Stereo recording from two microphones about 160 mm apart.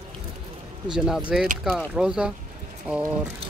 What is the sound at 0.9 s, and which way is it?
Speech, 5° right (ahead or behind).